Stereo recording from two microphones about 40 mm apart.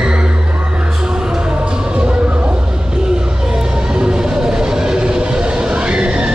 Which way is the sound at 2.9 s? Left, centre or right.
Centre.